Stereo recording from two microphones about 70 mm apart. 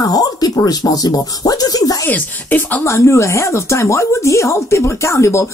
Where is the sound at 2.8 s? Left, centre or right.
Left.